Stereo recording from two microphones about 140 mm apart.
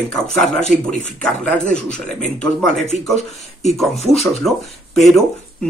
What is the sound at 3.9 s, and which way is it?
Speech, 50° left (ahead or behind).